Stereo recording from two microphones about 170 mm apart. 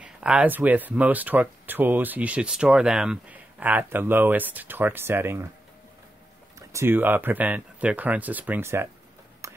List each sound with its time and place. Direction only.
0.0 s speech: 5° right (ahead or behind)
6.7 s speech: 15° right (ahead or behind)
9.4 s a sound: 15° right (ahead or behind)